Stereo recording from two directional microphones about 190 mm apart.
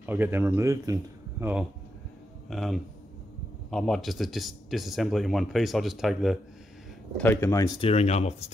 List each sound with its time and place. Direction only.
0.0 s speech: 10° right (ahead or behind)
7.2 s speech: 10° left (ahead or behind)
7.8 s speech: 35° left (ahead or behind)